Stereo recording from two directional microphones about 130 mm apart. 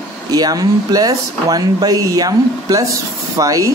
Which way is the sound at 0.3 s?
30° right (ahead or behind).